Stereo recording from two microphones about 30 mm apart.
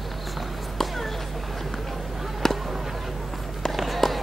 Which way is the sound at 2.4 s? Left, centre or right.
Centre.